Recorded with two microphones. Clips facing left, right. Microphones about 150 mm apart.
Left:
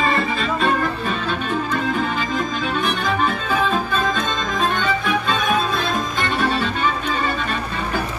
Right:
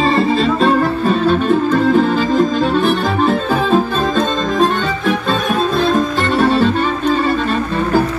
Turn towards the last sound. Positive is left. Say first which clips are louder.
# right 8 dB
turn(degrees=-40)  # may be behind; listen again after turning